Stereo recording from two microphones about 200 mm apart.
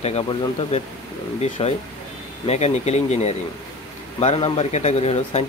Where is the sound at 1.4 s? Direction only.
30° left (ahead or behind).